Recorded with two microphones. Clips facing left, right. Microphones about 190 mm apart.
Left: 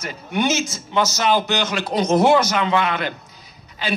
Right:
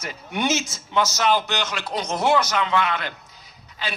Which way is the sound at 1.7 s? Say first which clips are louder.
Left 8 dB; 45° left (ahead or behind).